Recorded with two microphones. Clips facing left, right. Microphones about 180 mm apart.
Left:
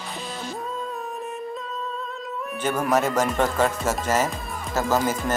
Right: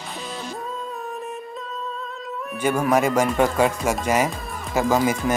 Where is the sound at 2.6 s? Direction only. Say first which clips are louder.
Right 3 dB; 10° right (ahead or behind).